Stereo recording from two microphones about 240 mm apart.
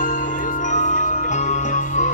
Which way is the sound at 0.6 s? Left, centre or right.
Left.